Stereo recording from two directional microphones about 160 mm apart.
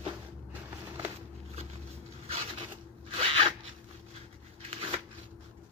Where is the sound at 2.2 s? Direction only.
35° right (ahead or behind).